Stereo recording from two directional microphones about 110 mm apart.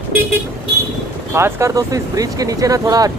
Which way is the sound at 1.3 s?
25° right (ahead or behind).